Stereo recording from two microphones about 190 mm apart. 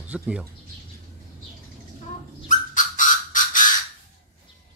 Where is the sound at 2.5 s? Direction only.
40° left (ahead or behind).